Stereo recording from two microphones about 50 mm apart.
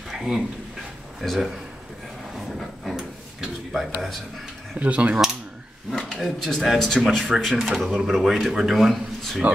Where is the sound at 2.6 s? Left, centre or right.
Centre.